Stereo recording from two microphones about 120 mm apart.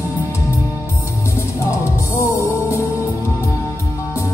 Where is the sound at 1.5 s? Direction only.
25° left (ahead or behind).